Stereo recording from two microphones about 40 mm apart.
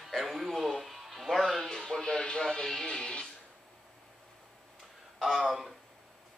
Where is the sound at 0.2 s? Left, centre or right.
Centre.